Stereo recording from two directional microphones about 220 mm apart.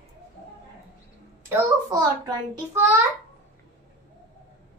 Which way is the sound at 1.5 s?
15° right (ahead or behind).